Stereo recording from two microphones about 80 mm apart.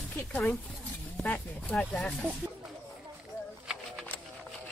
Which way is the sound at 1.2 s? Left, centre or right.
Centre.